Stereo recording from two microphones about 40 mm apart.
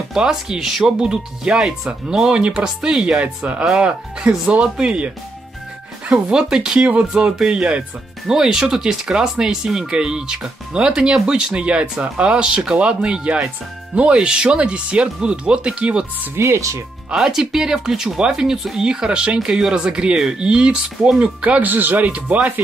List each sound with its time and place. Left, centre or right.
0.2 s speech: centre
3.2 s speech: right
3.7 s speech: centre
6.2 s speech: centre
8.3 s speech: centre
16.4 s speech: right
17.1 s speech: centre
18.9 s speech: centre
21.6 s speech: right
22.1 s speech: right